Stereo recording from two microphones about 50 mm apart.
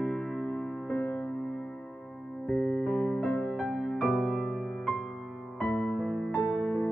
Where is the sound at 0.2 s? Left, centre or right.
Left.